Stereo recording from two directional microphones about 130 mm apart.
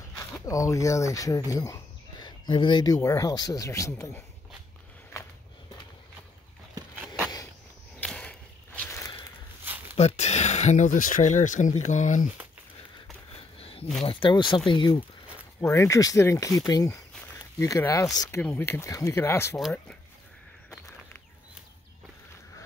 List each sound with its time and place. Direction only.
0.1 s speech: 25° left (ahead or behind)
8.0 s a sound: 10° left (ahead or behind)
9.9 s speech: 55° left (ahead or behind); by 12.3 s 70° left (ahead or behind)
13.6 s a sound: 45° left (ahead or behind)
14.0 s speech: 40° left (ahead or behind)
15.6 s speech: 25° left (ahead or behind)